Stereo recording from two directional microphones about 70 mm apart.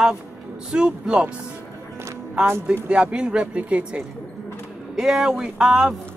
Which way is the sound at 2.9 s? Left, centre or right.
Centre.